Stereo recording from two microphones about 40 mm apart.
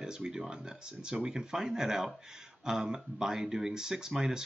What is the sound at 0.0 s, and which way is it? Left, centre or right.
Speech, centre.